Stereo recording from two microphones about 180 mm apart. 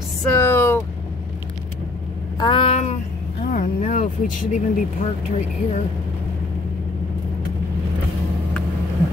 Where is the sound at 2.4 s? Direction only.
25° left (ahead or behind).